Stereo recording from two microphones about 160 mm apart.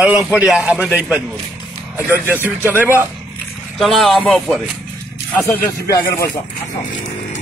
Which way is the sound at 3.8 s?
Centre (ahead or behind).